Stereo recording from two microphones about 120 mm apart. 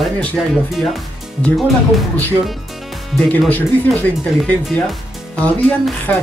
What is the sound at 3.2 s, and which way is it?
Speech, 10° left (ahead or behind).